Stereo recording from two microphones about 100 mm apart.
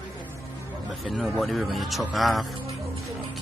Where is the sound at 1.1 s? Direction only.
Centre (ahead or behind).